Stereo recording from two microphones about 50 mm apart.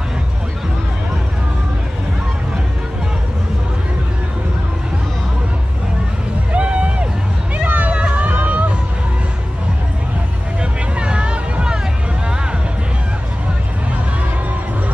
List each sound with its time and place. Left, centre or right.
6.5 s a sound: right
7.9 s music: right
10.6 s vehicle: right